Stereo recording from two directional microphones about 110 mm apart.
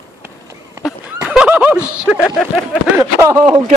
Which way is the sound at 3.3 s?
45° right (ahead or behind).